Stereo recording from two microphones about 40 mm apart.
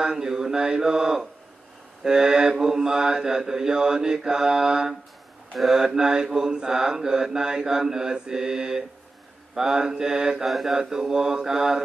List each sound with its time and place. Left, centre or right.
0.0 s mantra: centre
5.5 s mantra: centre
10.4 s mantra: centre